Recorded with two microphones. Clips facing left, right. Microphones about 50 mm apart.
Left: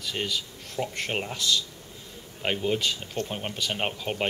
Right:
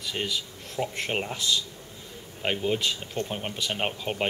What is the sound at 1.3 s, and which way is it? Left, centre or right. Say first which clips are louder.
Speech: left 1 dB; centre.